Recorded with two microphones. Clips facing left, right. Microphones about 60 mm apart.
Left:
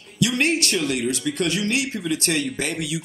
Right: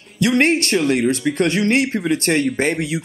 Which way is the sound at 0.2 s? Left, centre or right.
Right.